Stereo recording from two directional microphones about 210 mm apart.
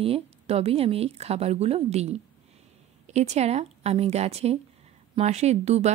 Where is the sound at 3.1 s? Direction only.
30° right (ahead or behind).